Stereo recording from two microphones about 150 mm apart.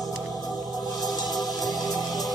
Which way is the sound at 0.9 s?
25° left (ahead or behind).